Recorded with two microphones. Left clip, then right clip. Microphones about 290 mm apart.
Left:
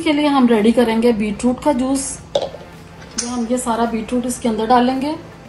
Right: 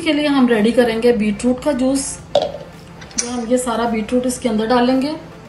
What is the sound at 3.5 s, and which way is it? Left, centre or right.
A woman's voice, centre.